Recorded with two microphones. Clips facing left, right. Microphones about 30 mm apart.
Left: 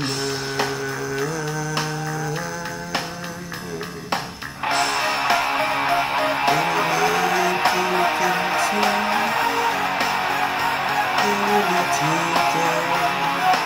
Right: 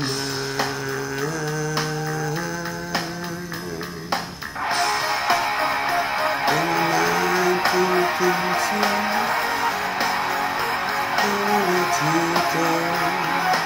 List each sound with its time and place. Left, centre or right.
4.6 s music: left
7.0 s music: left